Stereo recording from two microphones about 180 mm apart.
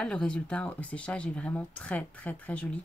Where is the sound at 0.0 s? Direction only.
5° left (ahead or behind).